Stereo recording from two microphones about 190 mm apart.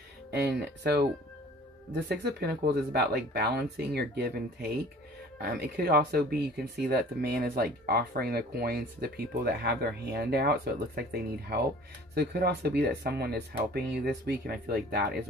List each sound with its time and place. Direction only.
0.3 s speech: 60° right (ahead or behind)
2.0 s speech: 60° right (ahead or behind)